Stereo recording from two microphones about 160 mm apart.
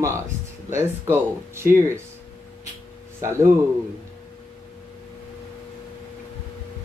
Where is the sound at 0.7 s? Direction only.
15° right (ahead or behind).